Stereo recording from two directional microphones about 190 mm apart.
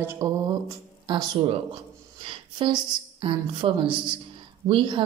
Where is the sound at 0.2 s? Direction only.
20° right (ahead or behind).